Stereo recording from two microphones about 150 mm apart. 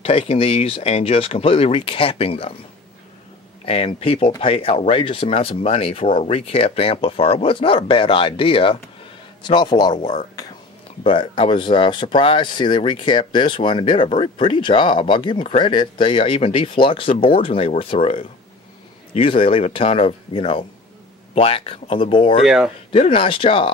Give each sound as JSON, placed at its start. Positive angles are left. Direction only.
{"t": 0.0, "sound": "speech", "side_deg": 40}
{"t": 3.6, "sound": "a man's voice", "side_deg": 40}
{"t": 11.1, "sound": "speech", "side_deg": 35}
{"t": 22.4, "sound": "speech", "side_deg": -5}
{"t": 22.8, "sound": "speech", "side_deg": 35}